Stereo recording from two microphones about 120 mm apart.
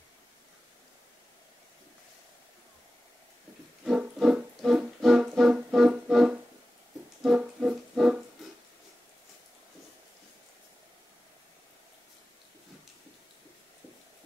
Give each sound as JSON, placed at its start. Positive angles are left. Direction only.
{"t": 3.8, "sound": "music", "side_deg": -5}